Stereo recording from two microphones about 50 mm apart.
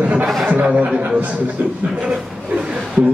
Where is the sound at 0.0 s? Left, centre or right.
Right.